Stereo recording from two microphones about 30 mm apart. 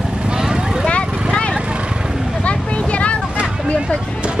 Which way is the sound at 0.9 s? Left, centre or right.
Left.